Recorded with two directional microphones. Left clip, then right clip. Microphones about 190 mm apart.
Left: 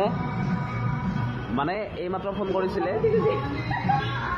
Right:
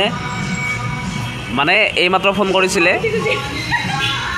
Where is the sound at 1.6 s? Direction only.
25° right (ahead or behind).